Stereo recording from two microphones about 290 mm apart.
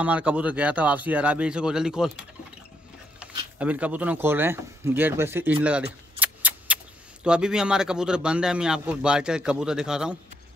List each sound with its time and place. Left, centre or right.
0.0 s speech: centre